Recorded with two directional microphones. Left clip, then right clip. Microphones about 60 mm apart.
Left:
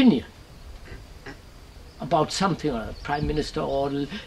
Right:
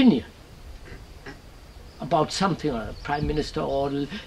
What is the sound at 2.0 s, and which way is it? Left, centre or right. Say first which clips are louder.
Speech: even; left.